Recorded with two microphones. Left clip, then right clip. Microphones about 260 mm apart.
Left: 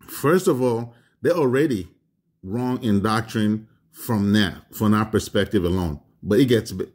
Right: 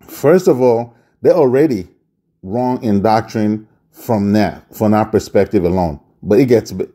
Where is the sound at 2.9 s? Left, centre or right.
Centre.